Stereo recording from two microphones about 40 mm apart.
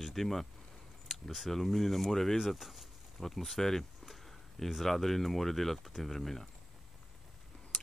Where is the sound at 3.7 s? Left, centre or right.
Centre.